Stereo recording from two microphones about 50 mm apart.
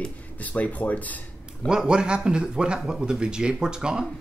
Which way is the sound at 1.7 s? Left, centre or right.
Centre.